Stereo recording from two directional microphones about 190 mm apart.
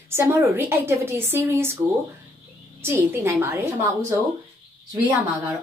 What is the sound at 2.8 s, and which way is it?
Speech, 10° right (ahead or behind).